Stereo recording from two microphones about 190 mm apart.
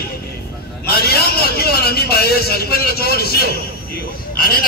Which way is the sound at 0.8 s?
55° left (ahead or behind).